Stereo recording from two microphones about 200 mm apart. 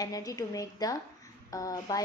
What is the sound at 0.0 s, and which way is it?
A woman's voice, 15° left (ahead or behind).